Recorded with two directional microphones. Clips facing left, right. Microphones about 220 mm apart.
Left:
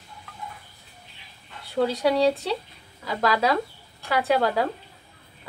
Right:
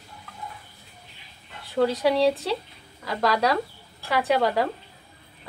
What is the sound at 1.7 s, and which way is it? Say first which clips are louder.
Speech: right 1 dB; centre (ahead or behind).